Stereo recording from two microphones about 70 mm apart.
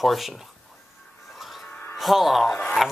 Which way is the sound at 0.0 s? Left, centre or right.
Centre.